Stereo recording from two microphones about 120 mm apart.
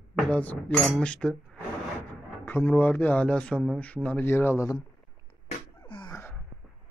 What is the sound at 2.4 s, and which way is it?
Speech, 15° left (ahead or behind).